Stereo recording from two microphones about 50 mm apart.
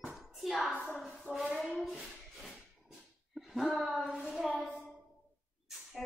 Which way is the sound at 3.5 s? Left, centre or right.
Centre.